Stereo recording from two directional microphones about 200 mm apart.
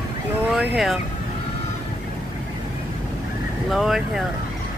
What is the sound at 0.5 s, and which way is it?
Speech, centre (ahead or behind).